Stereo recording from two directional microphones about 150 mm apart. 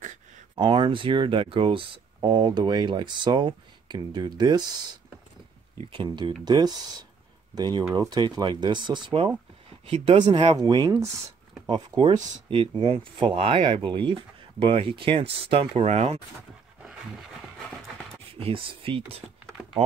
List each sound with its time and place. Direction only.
0.6 s speech: 35° right (ahead or behind)
5.9 s speech: 30° right (ahead or behind)
18.4 s speech: 35° right (ahead or behind)